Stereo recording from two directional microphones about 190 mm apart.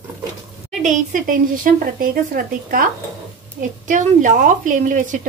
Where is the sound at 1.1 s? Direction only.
45° right (ahead or behind).